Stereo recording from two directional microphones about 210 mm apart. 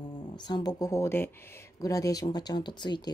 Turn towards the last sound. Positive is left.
turn(degrees=20)  # may be behind; listen again after turning